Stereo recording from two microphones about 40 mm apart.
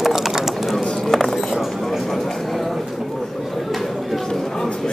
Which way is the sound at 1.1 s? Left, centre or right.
Centre.